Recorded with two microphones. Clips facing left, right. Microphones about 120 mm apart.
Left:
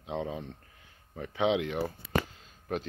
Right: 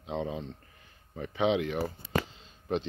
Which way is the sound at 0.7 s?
Centre (ahead or behind).